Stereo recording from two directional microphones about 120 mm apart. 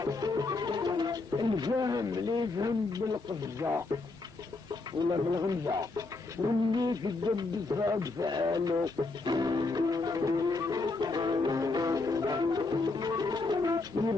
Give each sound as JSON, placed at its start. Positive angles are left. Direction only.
{"t": 0.0, "sound": "music", "side_deg": -30}
{"t": 3.5, "sound": "speech", "side_deg": -25}
{"t": 5.1, "sound": "bird", "side_deg": -35}